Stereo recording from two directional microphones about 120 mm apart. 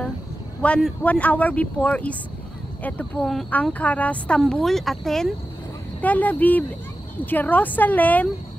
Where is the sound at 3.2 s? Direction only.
10° left (ahead or behind).